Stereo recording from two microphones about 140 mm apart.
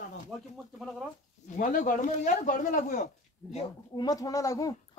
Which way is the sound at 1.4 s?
65° left (ahead or behind).